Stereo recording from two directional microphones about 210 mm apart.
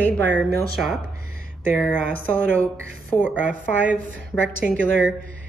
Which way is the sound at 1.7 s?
5° left (ahead or behind).